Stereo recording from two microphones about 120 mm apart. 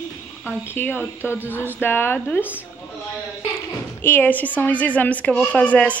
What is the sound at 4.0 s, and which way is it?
A woman's voice, 15° left (ahead or behind).